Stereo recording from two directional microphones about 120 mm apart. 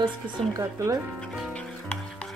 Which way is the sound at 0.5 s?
30° right (ahead or behind).